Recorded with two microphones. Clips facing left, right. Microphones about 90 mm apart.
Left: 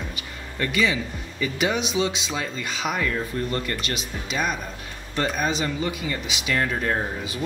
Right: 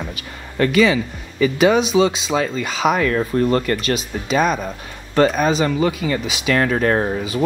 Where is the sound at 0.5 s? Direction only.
80° right.